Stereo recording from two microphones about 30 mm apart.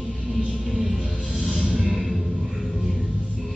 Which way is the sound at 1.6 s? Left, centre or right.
Right.